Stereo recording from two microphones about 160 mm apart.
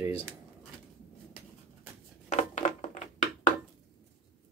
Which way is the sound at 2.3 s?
45° left (ahead or behind).